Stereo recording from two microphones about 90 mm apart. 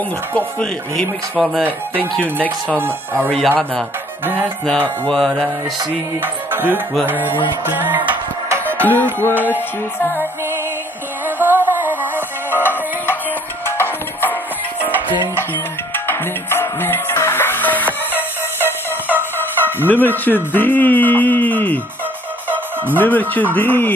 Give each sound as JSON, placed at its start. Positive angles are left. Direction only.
{"t": 2.0, "sound": "music", "side_deg": 15}
{"t": 2.8, "sound": "music", "side_deg": -25}
{"t": 3.4, "sound": "music", "side_deg": 10}
{"t": 6.2, "sound": "music", "side_deg": -25}
{"t": 8.8, "sound": "music", "side_deg": 20}
{"t": 9.3, "sound": "music", "side_deg": -20}
{"t": 9.9, "sound": "a man's voice", "side_deg": 25}
{"t": 11.2, "sound": "music", "side_deg": -20}
{"t": 12.5, "sound": "music", "side_deg": 25}
{"t": 14.8, "sound": "music", "side_deg": -20}
{"t": 15.5, "sound": "music", "side_deg": 25}
{"t": 18.6, "sound": "music", "side_deg": -20}
{"t": 19.3, "sound": "fowl", "side_deg": 20}
{"t": 22.9, "sound": "a man's voice", "side_deg": 20}